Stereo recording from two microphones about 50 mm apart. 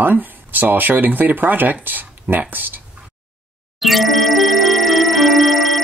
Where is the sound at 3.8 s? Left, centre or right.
Centre.